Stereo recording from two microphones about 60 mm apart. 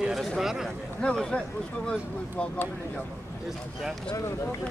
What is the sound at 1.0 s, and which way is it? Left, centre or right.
Speech, centre.